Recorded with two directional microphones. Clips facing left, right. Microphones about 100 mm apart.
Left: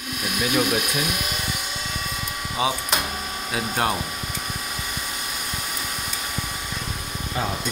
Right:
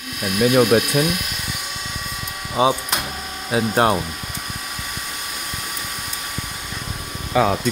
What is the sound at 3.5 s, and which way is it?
Speech, 35° right (ahead or behind).